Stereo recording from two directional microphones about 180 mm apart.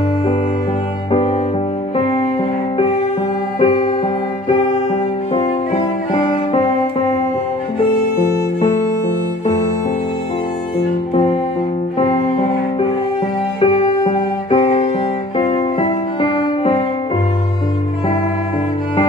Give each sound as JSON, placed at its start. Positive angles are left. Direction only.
{"t": 3.5, "sound": "music", "side_deg": 25}
{"t": 5.3, "sound": "music", "side_deg": 35}
{"t": 8.5, "sound": "music", "side_deg": 40}
{"t": 13.6, "sound": "music", "side_deg": 35}